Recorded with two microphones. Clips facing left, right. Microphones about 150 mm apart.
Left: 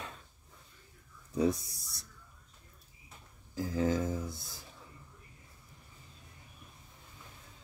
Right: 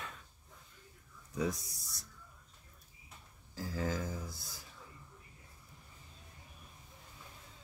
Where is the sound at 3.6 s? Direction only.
20° left (ahead or behind).